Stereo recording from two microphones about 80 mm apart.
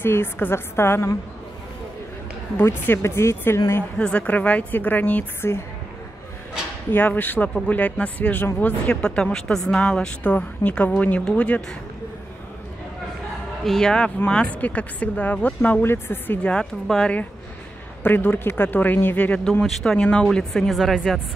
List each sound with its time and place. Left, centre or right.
0.0 s speech: left
2.5 s speech: left
4.0 s speech: centre
6.9 s speech: left
13.7 s speech: centre; by 16.3 s left
16.8 s speech: centre
18.0 s speech: left
19.6 s a woman's voice: centre